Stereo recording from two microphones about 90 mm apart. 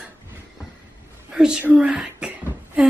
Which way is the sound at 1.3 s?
10° right (ahead or behind).